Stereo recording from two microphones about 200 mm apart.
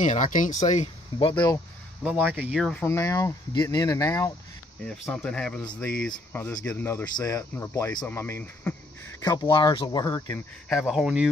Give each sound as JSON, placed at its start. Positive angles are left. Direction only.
{"t": 0.0, "sound": "speech", "side_deg": 40}
{"t": 2.0, "sound": "speech", "side_deg": -10}
{"t": 2.6, "sound": "speech", "side_deg": 10}
{"t": 10.7, "sound": "speech", "side_deg": 0}